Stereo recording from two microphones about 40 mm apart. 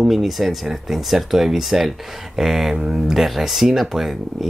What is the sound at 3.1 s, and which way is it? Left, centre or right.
Speech, centre.